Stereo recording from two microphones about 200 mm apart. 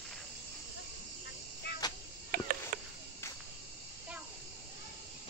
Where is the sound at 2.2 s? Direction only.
45° right (ahead or behind).